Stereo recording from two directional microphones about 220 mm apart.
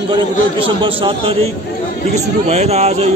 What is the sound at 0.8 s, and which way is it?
Speech, 25° right (ahead or behind).